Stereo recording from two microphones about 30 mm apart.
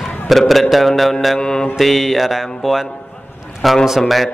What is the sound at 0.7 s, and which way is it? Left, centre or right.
Speech, centre.